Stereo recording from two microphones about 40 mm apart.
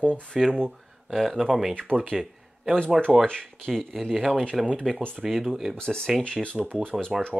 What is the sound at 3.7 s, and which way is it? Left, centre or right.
Speech, centre.